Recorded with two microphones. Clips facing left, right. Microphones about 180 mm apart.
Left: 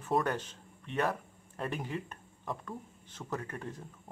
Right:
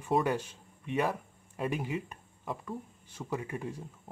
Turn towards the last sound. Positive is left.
turn(degrees=-10)  # may be behind; listen again after turning